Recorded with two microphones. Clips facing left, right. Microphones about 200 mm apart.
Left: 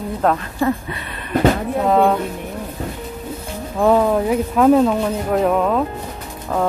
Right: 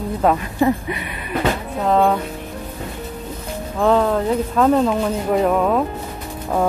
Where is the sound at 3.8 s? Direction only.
10° left (ahead or behind).